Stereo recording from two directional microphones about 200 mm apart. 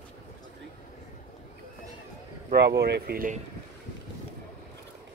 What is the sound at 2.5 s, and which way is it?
Speech, 55° right (ahead or behind).